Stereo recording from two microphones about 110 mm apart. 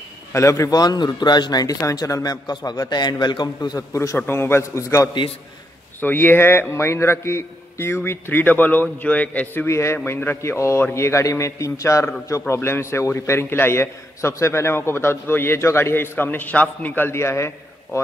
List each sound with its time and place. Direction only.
0.3 s a man's voice: 25° left (ahead or behind)
3.9 s a man's voice: 30° left (ahead or behind)
5.9 s a man's voice: 20° left (ahead or behind)